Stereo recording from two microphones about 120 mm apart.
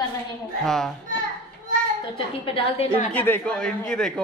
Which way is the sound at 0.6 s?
5° left (ahead or behind).